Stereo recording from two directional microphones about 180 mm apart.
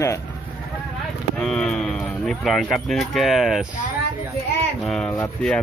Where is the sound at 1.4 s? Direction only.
5° left (ahead or behind).